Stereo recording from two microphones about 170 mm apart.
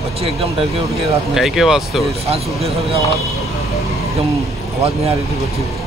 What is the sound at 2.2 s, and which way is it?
Speech, 35° right (ahead or behind).